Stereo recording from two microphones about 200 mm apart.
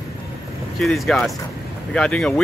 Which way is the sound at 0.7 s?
Centre (ahead or behind).